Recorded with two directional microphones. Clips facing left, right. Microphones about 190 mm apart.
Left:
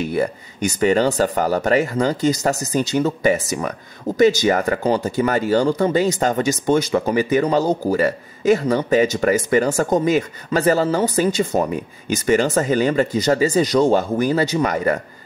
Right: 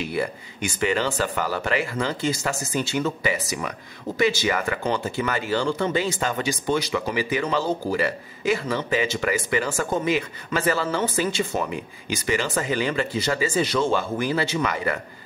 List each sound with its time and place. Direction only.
0.0 s speech: 45° left (ahead or behind)